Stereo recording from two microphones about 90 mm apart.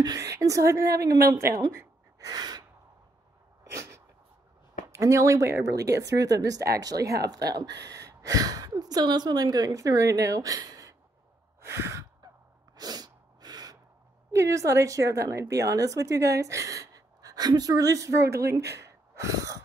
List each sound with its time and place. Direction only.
0.0 s a woman's voice: 40° right (ahead or behind)
4.9 s speech: 35° right (ahead or behind)
11.6 s gasp: 30° right (ahead or behind)
12.7 s sneeze: 45° right (ahead or behind)
14.3 s a woman's voice: 35° right (ahead or behind)